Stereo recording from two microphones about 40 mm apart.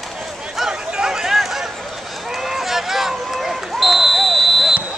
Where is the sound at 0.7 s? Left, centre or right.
Centre.